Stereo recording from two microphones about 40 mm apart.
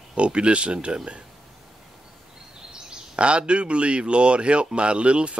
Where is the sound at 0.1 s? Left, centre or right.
Right.